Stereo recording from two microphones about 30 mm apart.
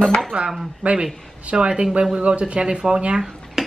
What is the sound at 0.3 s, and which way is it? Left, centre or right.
Dishes, right.